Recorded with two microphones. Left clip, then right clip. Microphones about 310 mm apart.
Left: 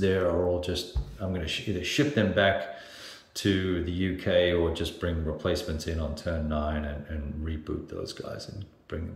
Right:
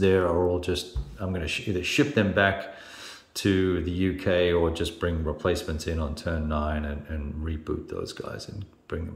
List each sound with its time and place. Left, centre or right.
0.0 s speech: centre